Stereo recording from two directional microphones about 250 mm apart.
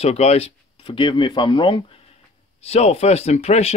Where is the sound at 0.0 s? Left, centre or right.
Left.